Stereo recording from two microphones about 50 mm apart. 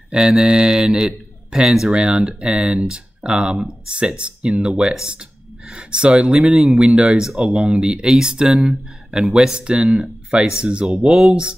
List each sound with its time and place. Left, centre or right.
0.4 s a man's voice: centre
6.5 s speech: centre
6.8 s speech: centre
7.2 s a man's voice: centre
9.6 s a man's voice: right